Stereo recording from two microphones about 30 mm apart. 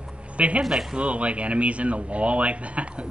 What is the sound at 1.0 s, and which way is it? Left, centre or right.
Speech, right.